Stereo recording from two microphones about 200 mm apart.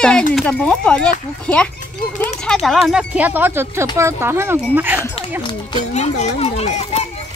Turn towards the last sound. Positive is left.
turn(degrees=35)  # may be behind; listen again after turning